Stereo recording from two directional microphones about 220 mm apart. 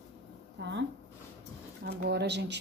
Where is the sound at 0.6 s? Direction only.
55° right (ahead or behind).